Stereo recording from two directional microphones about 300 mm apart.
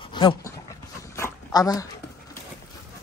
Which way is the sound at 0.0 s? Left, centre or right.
Centre.